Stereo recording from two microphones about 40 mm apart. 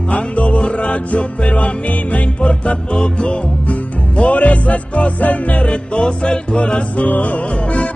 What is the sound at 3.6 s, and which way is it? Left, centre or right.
Music, left.